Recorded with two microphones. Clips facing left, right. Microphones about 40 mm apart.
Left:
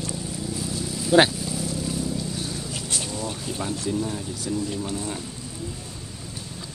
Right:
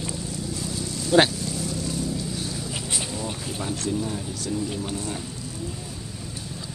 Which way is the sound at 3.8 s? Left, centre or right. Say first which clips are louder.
Even; centre.